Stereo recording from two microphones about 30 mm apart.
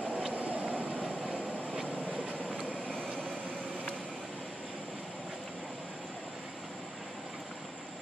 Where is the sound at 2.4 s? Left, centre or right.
Right.